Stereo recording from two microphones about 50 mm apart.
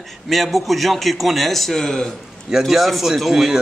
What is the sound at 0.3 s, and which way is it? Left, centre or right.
A man's voice, centre.